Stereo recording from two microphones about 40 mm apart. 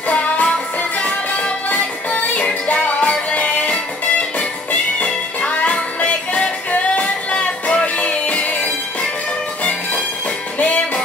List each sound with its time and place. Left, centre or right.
0.1 s music: left